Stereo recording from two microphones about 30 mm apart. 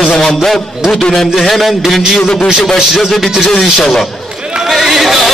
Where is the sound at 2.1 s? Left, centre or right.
Centre.